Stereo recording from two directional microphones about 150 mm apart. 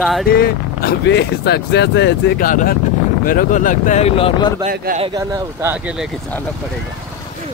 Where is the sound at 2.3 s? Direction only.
70° left (ahead or behind).